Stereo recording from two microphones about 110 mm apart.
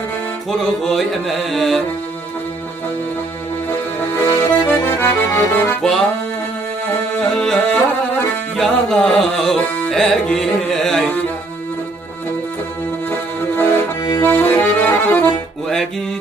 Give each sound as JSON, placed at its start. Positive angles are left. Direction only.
{"t": 0.5, "sound": "music", "side_deg": 0}
{"t": 4.3, "sound": "accordion", "side_deg": 45}
{"t": 4.7, "sound": "accordion", "side_deg": 20}
{"t": 5.8, "sound": "music", "side_deg": 5}
{"t": 7.2, "sound": "music", "side_deg": 5}
{"t": 13.1, "sound": "music", "side_deg": 25}
{"t": 14.2, "sound": "accordion", "side_deg": 15}